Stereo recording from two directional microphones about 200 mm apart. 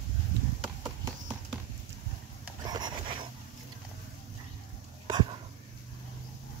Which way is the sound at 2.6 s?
20° right (ahead or behind).